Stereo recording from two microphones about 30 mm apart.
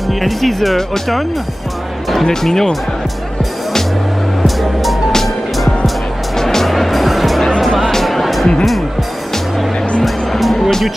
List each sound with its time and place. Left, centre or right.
0.2 s speech: centre
2.4 s speech: centre
6.3 s music: centre
7.7 s music: centre
8.0 s music: centre
10.0 s music: centre